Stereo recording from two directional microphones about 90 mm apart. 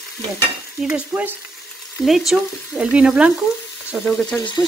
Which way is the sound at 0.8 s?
15° right (ahead or behind).